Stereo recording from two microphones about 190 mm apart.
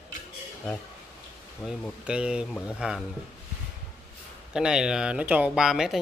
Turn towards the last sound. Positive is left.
turn(degrees=0)  # may be behind; listen again after turning